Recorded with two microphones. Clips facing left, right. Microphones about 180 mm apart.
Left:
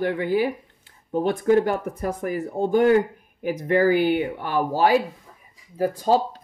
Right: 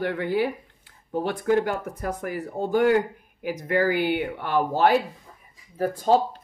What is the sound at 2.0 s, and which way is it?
Speech, 25° left (ahead or behind).